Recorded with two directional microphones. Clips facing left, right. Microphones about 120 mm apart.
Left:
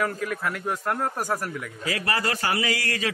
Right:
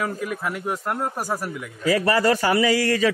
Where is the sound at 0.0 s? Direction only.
10° right (ahead or behind).